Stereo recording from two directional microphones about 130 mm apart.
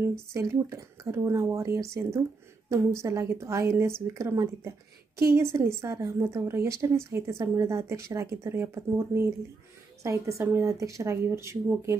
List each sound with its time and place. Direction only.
0.1 s a woman's voice: 20° right (ahead or behind)